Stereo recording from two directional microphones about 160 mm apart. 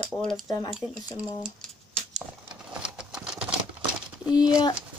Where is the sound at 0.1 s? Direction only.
Centre (ahead or behind).